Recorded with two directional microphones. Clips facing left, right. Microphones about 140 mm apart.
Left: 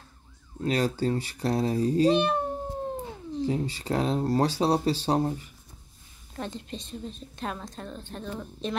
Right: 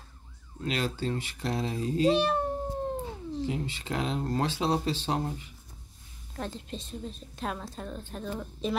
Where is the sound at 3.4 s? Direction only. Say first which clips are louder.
Left 8 dB; 35° left (ahead or behind).